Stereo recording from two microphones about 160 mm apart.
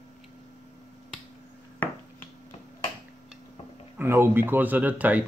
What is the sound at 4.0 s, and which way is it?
Speech, 15° right (ahead or behind).